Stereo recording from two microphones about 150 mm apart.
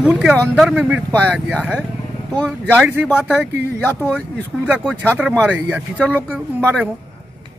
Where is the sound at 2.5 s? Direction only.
10° right (ahead or behind).